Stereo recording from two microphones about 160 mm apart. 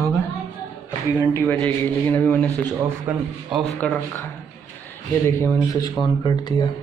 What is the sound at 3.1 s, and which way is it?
Speech, 10° right (ahead or behind).